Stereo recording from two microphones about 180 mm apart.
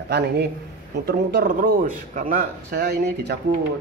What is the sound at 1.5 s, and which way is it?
A man's voice, 45° right (ahead or behind).